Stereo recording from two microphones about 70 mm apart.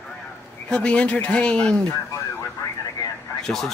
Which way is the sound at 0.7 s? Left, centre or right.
Centre.